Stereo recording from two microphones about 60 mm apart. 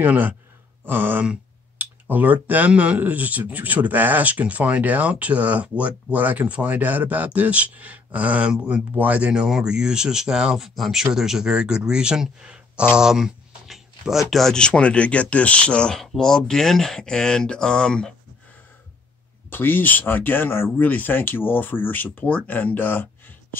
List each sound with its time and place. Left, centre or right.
0.0 s a sound: right
1.8 s speech: right; by 14.5 s centre
14.5 s speech: centre
19.5 s speech: left
20.8 s speech: left